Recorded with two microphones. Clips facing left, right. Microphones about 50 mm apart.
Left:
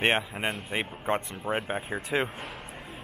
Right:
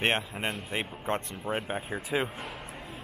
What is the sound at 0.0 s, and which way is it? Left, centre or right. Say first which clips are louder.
Speech: left 2 dB; centre.